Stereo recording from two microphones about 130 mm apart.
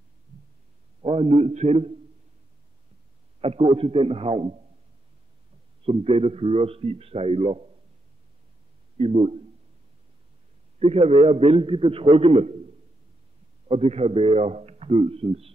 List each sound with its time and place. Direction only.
1.0 s a man's voice: 50° right (ahead or behind)
3.3 s a man's voice: 50° right (ahead or behind)
5.9 s a man's voice: 50° right (ahead or behind)
8.9 s a man's voice: 55° right (ahead or behind)
10.8 s a man's voice: 50° right (ahead or behind)
13.7 s a man's voice: 55° right (ahead or behind)